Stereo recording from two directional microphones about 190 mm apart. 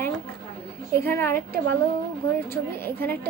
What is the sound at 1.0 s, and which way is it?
Speech, 10° left (ahead or behind).